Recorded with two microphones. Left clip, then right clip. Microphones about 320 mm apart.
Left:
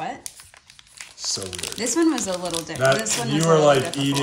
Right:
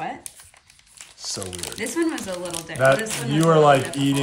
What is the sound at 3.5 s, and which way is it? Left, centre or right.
Speech, right.